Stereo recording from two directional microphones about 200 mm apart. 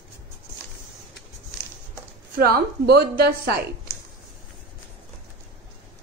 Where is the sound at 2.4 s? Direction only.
50° right (ahead or behind).